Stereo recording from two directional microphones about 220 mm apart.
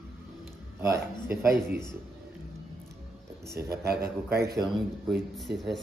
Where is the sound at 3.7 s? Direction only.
45° right (ahead or behind).